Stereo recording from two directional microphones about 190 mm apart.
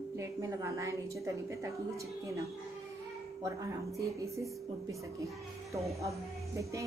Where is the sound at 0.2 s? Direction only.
15° right (ahead or behind).